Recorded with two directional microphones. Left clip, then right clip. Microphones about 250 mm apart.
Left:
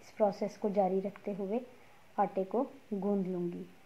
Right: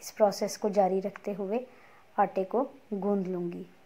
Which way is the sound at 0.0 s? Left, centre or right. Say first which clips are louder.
Right 5 dB; centre.